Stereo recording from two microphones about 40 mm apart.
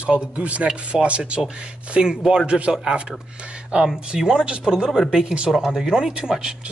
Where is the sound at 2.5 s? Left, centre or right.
Right.